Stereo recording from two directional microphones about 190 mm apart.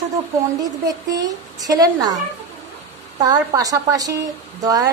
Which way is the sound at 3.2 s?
20° right (ahead or behind).